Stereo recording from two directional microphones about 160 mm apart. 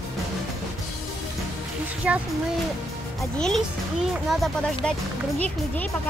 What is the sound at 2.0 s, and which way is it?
Speech, 5° right (ahead or behind).